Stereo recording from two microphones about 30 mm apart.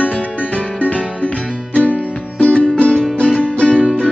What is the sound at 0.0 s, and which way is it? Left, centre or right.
Music, left.